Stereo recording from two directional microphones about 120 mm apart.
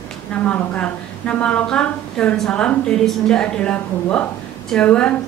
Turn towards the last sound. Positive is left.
turn(degrees=10)  # may be behind; listen again after turning